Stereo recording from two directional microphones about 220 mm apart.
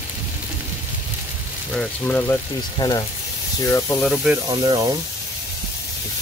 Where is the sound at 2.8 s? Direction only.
20° left (ahead or behind).